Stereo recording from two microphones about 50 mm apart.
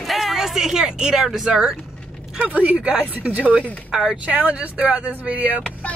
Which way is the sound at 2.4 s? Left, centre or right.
Right.